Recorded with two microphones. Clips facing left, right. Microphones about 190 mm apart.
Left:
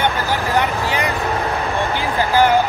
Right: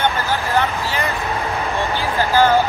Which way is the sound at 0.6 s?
15° left (ahead or behind).